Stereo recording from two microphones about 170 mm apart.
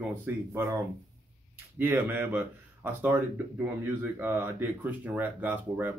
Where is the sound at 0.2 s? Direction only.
15° right (ahead or behind).